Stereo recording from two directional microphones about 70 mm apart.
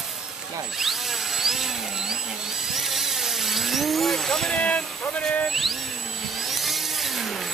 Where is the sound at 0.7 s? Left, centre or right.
Centre.